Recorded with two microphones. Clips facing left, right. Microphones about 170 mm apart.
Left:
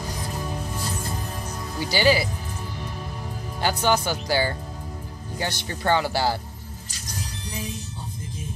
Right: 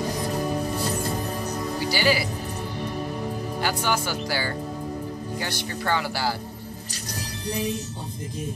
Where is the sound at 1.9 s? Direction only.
25° left (ahead or behind).